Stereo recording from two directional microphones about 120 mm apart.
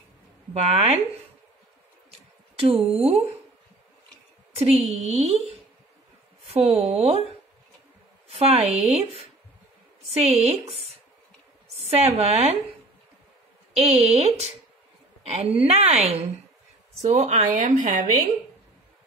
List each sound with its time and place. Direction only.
0.5 s speech: 60° right (ahead or behind)
2.6 s speech: 55° right (ahead or behind)
4.6 s speech: 55° right (ahead or behind)
8.3 s speech: 55° right (ahead or behind)
11.7 s speech: 60° right (ahead or behind)
13.7 s speech: 60° right (ahead or behind)
17.0 s speech: 75° right (ahead or behind)